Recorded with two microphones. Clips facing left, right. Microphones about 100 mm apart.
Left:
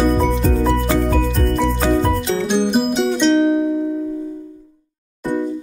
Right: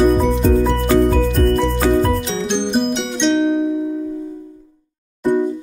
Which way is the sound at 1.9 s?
Centre (ahead or behind).